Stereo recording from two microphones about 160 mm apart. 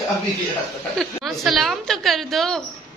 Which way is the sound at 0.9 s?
Centre (ahead or behind).